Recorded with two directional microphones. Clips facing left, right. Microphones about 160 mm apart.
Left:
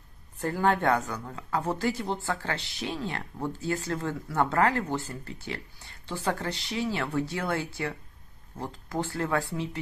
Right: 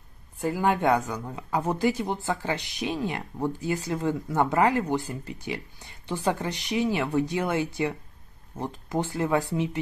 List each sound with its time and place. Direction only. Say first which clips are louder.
0.4 s speech: right 1 dB; 10° right (ahead or behind)